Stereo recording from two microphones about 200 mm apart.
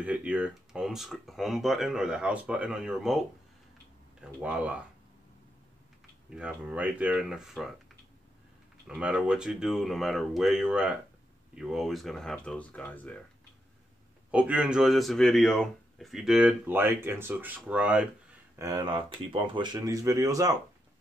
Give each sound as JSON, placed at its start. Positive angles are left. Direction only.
{"t": 0.0, "sound": "speech", "side_deg": -5}
{"t": 6.3, "sound": "speech", "side_deg": -5}
{"t": 8.8, "sound": "speech", "side_deg": -5}
{"t": 14.3, "sound": "speech", "side_deg": -5}
{"t": 18.6, "sound": "speech", "side_deg": -20}